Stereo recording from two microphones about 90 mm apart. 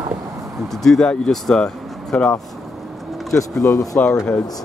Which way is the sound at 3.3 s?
35° left (ahead or behind).